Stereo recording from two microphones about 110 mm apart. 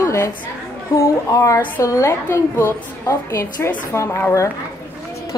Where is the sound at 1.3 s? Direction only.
25° left (ahead or behind).